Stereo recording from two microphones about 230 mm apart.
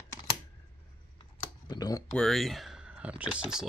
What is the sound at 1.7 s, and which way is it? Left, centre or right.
Speech, centre.